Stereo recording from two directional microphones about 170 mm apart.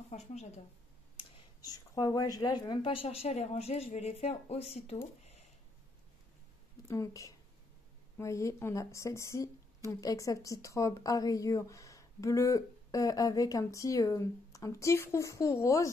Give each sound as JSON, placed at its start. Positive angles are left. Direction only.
{"t": 0.1, "sound": "speech", "side_deg": 40}
{"t": 1.6, "sound": "speech", "side_deg": 20}
{"t": 6.9, "sound": "a woman's voice", "side_deg": 20}